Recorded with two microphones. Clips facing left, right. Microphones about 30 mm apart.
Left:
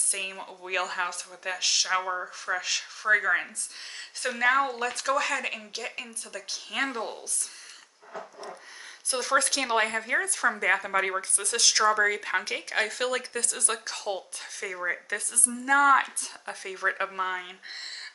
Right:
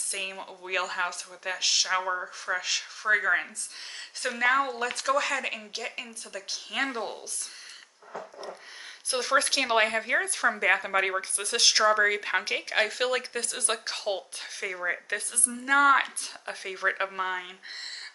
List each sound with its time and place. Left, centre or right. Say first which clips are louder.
0.1 s speech: right 2 dB; centre
9.1 s speech: right 1 dB; centre